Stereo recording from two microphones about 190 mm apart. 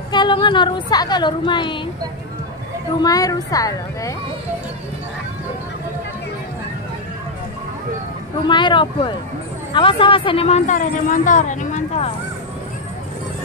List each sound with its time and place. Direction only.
0.1 s a woman's voice: 25° left (ahead or behind)
3.0 s a woman's voice: 20° left (ahead or behind)
8.5 s a woman's voice: 25° left (ahead or behind)